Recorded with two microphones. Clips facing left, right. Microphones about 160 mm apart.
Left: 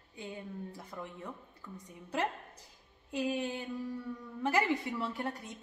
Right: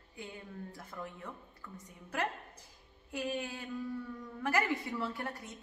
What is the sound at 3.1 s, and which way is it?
A man's voice, 20° left (ahead or behind).